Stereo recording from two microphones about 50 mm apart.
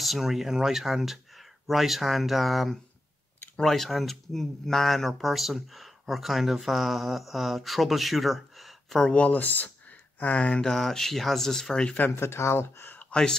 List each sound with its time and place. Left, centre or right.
0.0 s speech: centre
9.1 s speech: left
10.6 s speech: centre
12.2 s speech: left
13.1 s speech: centre